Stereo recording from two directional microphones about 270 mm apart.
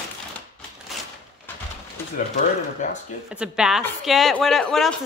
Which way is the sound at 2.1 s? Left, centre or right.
Left.